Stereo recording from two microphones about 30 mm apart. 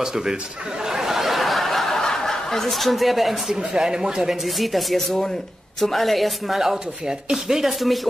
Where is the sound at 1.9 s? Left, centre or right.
Centre.